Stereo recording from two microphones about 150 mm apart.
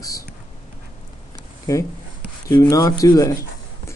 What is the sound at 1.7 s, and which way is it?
Speech, 25° left (ahead or behind).